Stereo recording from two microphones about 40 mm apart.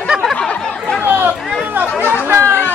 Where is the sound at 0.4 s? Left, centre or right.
Left.